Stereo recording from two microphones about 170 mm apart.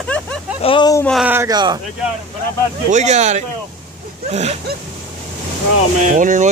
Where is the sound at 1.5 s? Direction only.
25° right (ahead or behind).